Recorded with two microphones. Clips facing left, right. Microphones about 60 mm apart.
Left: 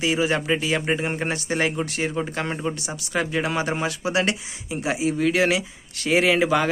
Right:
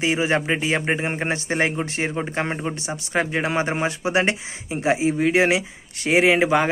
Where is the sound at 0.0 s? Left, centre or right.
Right.